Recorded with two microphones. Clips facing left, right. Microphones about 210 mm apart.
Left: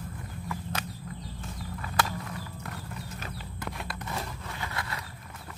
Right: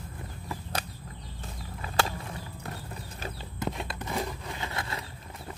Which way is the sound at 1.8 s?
25° right (ahead or behind).